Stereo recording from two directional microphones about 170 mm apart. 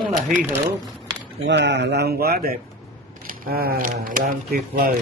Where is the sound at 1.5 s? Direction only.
90° right; by 4.9 s 60° right (ahead or behind).